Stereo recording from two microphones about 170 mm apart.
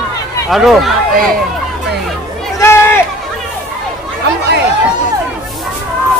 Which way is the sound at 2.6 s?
15° left (ahead or behind).